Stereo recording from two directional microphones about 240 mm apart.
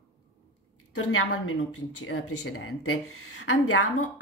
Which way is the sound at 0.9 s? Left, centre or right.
Left.